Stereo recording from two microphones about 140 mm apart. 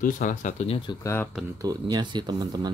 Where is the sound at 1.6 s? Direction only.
25° right (ahead or behind).